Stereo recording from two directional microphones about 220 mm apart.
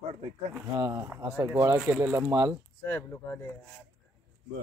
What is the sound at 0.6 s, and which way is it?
Speech, 15° right (ahead or behind).